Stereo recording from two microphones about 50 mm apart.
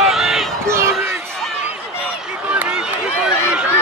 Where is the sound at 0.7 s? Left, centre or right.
Right.